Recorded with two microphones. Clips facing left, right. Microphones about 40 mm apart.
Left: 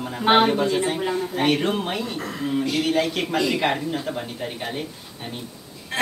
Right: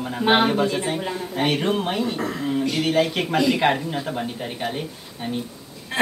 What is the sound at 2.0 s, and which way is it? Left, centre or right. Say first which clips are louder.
Speech: right 3 dB; centre.